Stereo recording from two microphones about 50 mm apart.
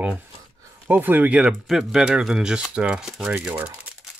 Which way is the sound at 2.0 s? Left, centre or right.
Centre.